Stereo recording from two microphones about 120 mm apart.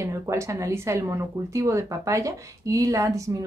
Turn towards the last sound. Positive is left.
turn(degrees=-25)  # may be behind; listen again after turning